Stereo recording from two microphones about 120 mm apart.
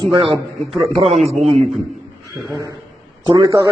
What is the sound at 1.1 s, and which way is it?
Speech, centre (ahead or behind).